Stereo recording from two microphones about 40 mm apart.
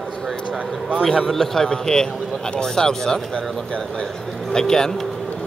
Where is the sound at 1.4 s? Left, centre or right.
Centre.